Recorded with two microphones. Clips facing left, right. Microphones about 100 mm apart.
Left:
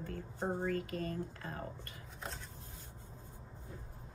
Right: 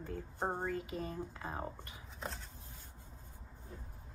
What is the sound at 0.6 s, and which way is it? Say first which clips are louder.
Speech: left 2 dB; 20° right (ahead or behind).